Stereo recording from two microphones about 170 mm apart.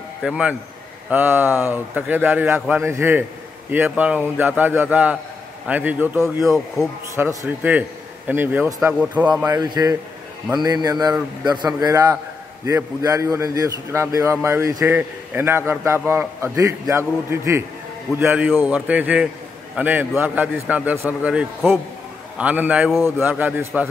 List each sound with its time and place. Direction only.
0.2 s a man's voice: 5° right (ahead or behind)
9.6 s a man's voice: 25° right (ahead or behind)